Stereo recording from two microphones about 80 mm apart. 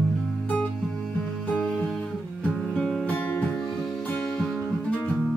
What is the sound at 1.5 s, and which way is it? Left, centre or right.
Music, centre.